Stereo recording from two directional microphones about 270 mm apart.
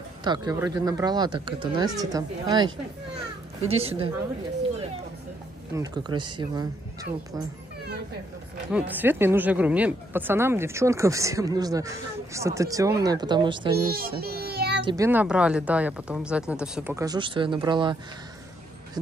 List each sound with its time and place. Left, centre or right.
0.2 s a woman's voice: centre
5.8 s speech: centre
8.7 s speech: centre
13.9 s a child's voice: right
14.9 s speech: centre